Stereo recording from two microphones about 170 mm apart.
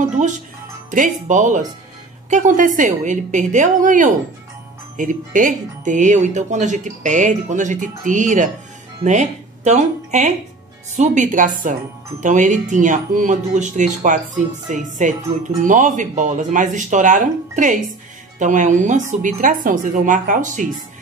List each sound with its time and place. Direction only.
0.0 s speech: 45° right (ahead or behind)